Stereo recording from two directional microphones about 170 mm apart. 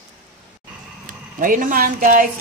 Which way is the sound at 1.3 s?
50° right (ahead or behind).